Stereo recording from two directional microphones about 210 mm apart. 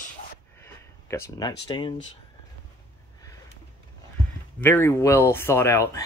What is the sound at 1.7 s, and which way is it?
Speech, 20° left (ahead or behind).